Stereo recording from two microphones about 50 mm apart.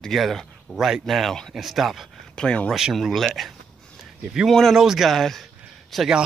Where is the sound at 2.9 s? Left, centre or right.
Centre.